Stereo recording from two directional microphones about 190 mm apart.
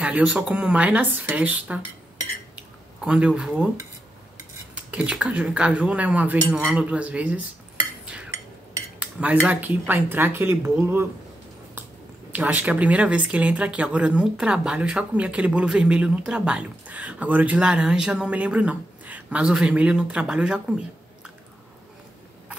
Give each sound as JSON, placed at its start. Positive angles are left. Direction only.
{"t": 0.0, "sound": "speech", "side_deg": -5}
{"t": 3.0, "sound": "speech", "side_deg": -5}
{"t": 9.0, "sound": "speech", "side_deg": -10}
{"t": 12.3, "sound": "speech", "side_deg": -10}